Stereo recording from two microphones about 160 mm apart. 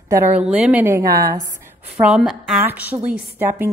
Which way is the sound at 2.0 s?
5° right (ahead or behind).